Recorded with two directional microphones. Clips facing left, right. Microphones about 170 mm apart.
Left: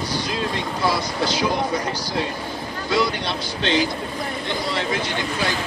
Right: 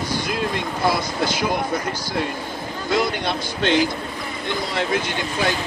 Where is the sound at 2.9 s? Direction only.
50° right (ahead or behind).